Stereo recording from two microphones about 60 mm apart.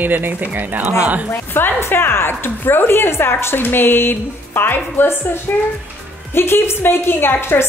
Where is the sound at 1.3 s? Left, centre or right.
Left.